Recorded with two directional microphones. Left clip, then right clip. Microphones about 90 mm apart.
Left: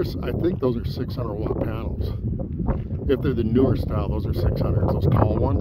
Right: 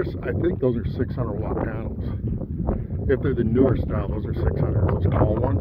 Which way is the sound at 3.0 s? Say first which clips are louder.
Even; 55° left (ahead or behind).